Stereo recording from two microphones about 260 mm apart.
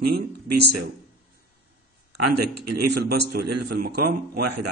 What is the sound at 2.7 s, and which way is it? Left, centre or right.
A man's voice, right.